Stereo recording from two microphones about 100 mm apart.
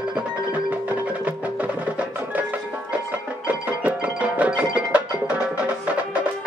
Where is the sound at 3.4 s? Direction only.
15° right (ahead or behind).